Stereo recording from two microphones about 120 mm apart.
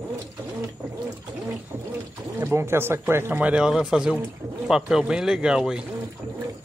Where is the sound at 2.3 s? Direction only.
20° right (ahead or behind).